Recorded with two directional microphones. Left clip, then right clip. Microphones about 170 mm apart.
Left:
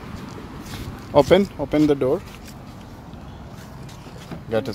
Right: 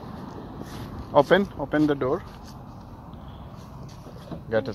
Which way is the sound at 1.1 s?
35° left (ahead or behind).